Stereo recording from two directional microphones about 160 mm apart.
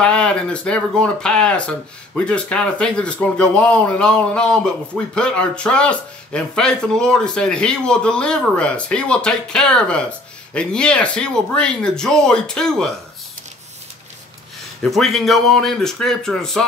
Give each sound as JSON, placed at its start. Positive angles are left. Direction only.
{"t": 0.0, "sound": "speech", "side_deg": 5}
{"t": 14.8, "sound": "speech", "side_deg": 0}